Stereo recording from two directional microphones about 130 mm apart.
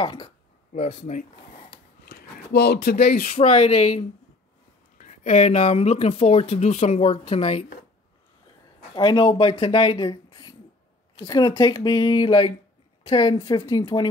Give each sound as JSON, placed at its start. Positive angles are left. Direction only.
{"t": 0.0, "sound": "speech", "side_deg": 40}
{"t": 0.7, "sound": "speech", "side_deg": 65}
{"t": 3.1, "sound": "speech", "side_deg": 90}
{"t": 3.5, "sound": "speech", "side_deg": 60}
{"t": 4.9, "sound": "speech", "side_deg": 75}
{"t": 8.9, "sound": "speech", "side_deg": 35}